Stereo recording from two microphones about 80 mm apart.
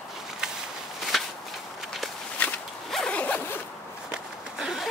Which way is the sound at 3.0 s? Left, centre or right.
Centre.